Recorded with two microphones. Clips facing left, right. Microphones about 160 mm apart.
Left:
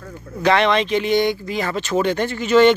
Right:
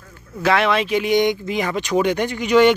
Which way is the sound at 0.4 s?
5° right (ahead or behind).